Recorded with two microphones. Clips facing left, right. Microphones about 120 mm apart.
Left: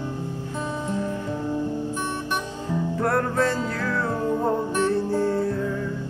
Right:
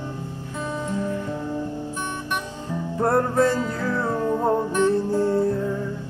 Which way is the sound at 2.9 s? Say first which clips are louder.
Right 4 dB; 25° right (ahead or behind).